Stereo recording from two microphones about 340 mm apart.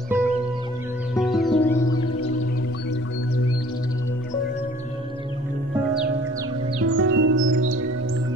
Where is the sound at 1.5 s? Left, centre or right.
Centre.